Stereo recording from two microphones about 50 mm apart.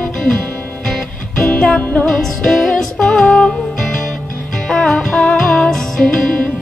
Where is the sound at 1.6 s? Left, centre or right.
Left.